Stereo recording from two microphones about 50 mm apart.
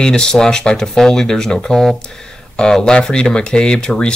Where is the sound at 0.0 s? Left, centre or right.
Centre.